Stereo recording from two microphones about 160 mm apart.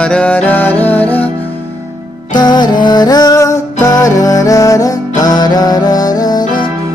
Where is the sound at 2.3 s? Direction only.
25° left (ahead or behind).